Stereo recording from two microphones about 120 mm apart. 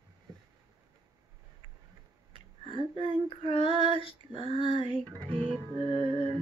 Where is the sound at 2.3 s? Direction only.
45° left (ahead or behind).